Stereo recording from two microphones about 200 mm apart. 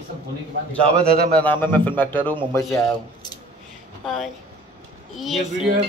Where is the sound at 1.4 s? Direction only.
10° left (ahead or behind).